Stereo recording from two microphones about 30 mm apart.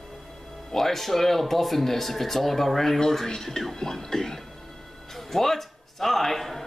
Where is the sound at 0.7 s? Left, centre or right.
Centre.